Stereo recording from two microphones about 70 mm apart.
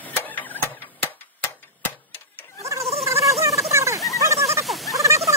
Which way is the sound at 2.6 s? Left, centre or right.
Right.